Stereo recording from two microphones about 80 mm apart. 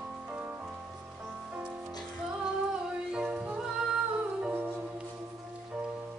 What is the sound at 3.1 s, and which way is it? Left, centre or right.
Music, centre.